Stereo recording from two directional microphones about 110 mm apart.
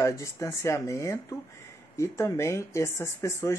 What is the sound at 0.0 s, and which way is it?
Speech, 30° left (ahead or behind).